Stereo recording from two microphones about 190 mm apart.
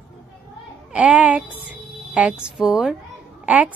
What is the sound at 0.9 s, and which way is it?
Speech, 5° right (ahead or behind).